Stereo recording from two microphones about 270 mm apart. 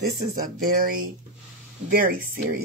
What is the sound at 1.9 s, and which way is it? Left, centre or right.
Speech, right.